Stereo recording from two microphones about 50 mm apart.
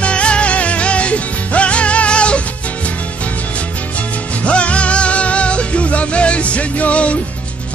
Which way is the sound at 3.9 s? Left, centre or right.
Left.